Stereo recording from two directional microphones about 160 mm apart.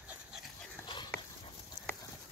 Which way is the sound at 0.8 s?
30° left (ahead or behind).